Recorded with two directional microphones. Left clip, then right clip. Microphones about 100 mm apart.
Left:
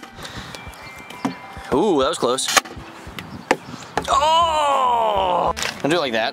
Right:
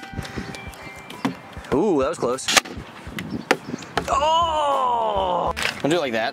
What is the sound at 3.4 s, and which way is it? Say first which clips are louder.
Chop: left 1 dB; 25° right (ahead or behind).